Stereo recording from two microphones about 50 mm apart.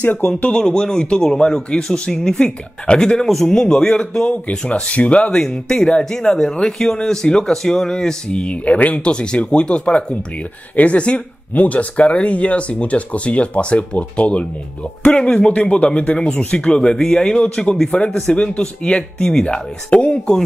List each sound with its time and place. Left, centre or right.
0.0 s speech: left
0.6 s speech: centre